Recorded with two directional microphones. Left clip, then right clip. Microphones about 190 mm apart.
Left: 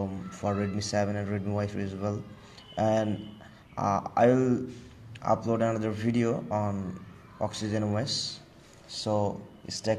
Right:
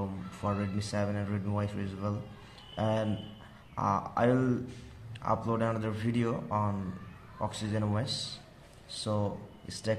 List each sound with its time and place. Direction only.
0.4 s a man's voice: 15° left (ahead or behind)